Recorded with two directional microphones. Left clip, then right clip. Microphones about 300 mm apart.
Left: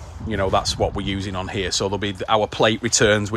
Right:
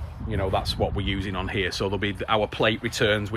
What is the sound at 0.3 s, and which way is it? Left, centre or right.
Speech, left.